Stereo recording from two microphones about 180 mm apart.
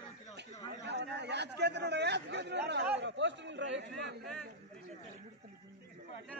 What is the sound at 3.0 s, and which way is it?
Speech, 85° right.